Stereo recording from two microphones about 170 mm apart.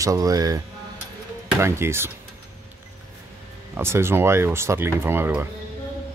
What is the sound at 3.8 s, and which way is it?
Speech, 15° right (ahead or behind).